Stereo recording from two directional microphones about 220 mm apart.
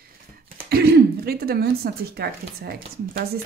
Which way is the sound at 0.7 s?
45° right (ahead or behind).